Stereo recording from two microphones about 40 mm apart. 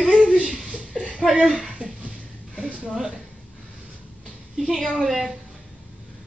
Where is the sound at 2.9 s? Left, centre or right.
Centre.